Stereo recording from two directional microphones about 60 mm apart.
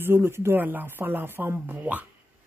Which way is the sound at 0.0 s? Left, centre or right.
Right.